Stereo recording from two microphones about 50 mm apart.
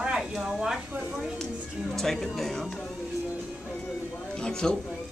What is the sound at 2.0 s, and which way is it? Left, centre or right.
Speech, centre.